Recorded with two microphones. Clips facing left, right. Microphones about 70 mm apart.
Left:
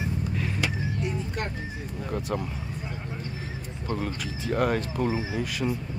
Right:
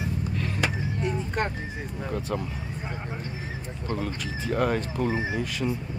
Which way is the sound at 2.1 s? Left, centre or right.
Centre.